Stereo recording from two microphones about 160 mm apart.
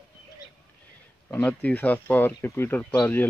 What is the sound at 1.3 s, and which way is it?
Speech, 10° left (ahead or behind).